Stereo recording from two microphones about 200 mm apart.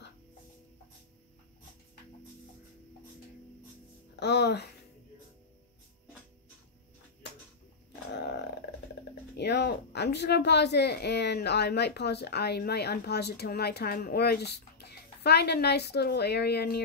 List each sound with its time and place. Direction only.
4.2 s speech: 55° left (ahead or behind)
8.1 s a sound: 55° left (ahead or behind)
9.4 s speech: 55° left (ahead or behind)